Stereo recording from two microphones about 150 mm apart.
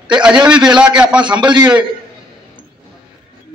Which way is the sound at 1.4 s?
30° right (ahead or behind).